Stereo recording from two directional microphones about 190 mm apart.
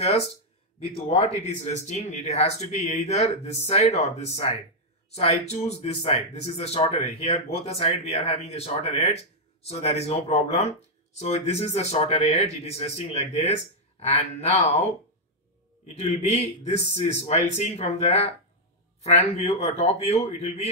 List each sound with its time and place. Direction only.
1.0 s speech: 35° left (ahead or behind)